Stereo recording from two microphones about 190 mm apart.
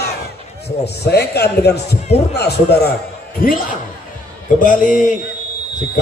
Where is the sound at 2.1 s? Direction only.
35° left (ahead or behind).